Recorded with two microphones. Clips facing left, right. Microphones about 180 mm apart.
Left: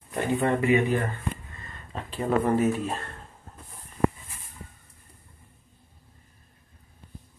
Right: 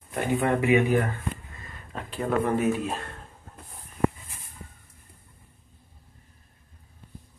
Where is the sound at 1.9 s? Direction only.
5° left (ahead or behind).